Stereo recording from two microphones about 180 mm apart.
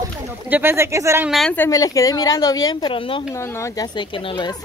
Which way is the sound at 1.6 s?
20° left (ahead or behind).